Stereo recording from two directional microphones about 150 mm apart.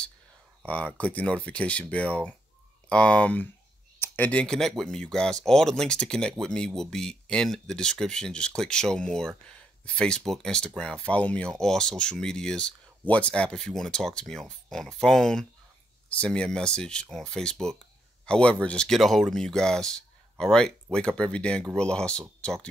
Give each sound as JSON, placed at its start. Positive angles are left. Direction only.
{"t": 0.7, "sound": "speech", "side_deg": 10}